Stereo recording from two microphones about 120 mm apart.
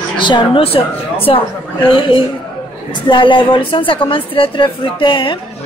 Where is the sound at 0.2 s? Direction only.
40° left (ahead or behind).